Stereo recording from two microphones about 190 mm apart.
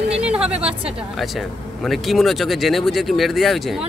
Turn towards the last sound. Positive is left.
turn(degrees=0)  # may be behind; listen again after turning